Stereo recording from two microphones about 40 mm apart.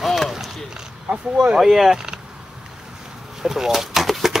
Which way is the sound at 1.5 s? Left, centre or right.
Centre.